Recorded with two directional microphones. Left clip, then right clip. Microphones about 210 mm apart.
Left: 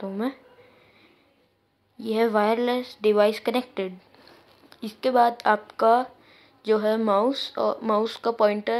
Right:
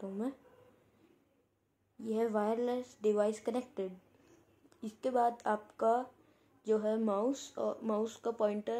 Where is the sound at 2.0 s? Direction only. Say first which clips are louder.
Left 12 dB; 20° left (ahead or behind).